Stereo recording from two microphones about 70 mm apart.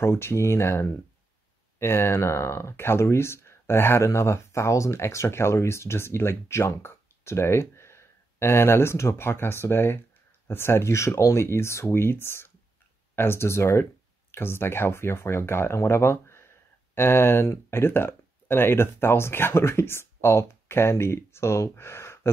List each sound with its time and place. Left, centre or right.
0.0 s speech: left